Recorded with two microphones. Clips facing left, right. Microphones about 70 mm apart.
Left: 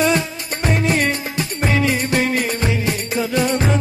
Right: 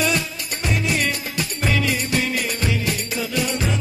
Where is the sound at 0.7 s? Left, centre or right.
Left.